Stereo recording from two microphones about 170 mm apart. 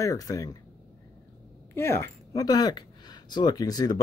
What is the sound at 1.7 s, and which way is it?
Speech, 15° left (ahead or behind).